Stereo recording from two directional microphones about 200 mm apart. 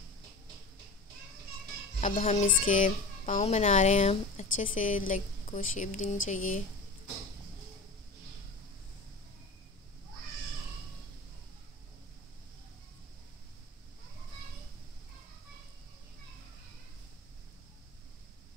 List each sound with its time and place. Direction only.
2.0 s a child's voice: 35° left (ahead or behind)